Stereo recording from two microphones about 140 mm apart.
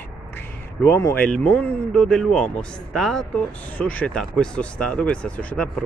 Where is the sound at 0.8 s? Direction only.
20° left (ahead or behind).